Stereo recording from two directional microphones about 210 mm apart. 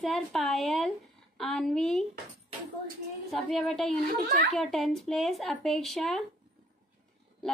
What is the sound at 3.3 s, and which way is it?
A woman's voice, centre (ahead or behind).